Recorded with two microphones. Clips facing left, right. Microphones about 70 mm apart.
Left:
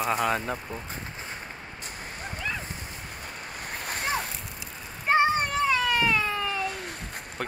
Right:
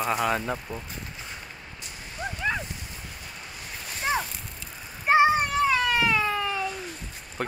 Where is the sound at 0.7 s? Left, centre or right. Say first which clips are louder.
Right 1 dB; left.